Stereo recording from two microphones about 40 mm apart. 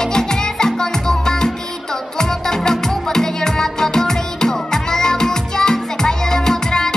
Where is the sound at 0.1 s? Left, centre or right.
Centre.